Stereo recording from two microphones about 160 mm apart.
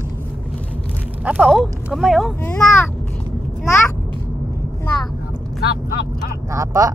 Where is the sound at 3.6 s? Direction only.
15° left (ahead or behind).